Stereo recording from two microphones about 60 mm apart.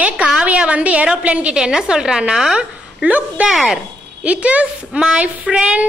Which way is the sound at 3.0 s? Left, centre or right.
Right.